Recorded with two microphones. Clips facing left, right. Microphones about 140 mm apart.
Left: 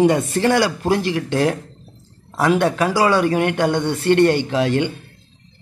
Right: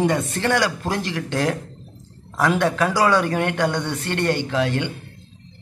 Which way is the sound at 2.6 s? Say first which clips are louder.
Left 2 dB; 15° left (ahead or behind).